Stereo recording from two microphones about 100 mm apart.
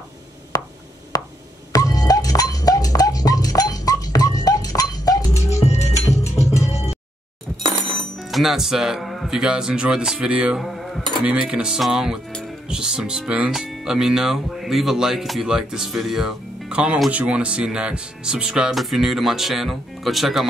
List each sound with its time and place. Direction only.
0.5 s a sound: 40° left (ahead or behind)
1.7 s music: 40° left (ahead or behind)
5.6 s music: 90° left
8.0 s speech: centre (ahead or behind)
10.6 s cutlery: centre (ahead or behind)
11.2 s music: 10° right (ahead or behind)
12.6 s speech: 10° right (ahead or behind)